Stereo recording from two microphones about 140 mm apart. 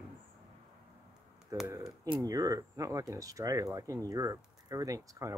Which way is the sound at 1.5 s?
20° right (ahead or behind).